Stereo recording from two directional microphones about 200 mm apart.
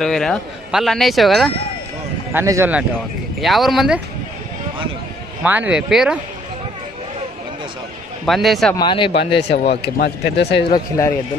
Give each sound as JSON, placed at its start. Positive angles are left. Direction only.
{"t": 0.0, "sound": "speech", "side_deg": 5}
{"t": 2.3, "sound": "speech", "side_deg": -15}
{"t": 3.3, "sound": "speech", "side_deg": 0}
{"t": 5.4, "sound": "speech", "side_deg": -5}
{"t": 8.3, "sound": "speech", "side_deg": 0}
{"t": 8.7, "sound": "speech", "side_deg": 25}
{"t": 9.1, "sound": "speech", "side_deg": 55}
{"t": 10.7, "sound": "speech", "side_deg": 15}